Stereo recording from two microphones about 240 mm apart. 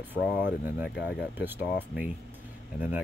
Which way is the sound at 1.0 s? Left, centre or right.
Left.